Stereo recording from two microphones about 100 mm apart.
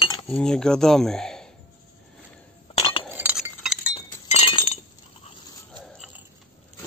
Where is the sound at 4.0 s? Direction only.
65° left (ahead or behind).